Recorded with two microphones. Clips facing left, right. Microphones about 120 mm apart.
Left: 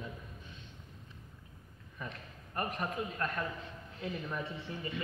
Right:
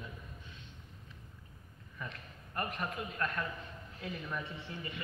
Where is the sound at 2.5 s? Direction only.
35° left (ahead or behind).